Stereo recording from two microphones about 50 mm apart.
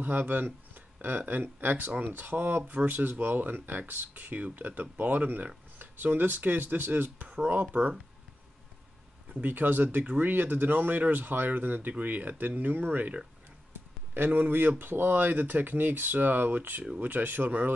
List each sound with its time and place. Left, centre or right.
0.0 s speech: right
9.3 s speech: right